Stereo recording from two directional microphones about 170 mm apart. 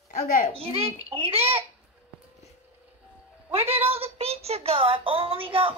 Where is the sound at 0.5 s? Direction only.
35° right (ahead or behind).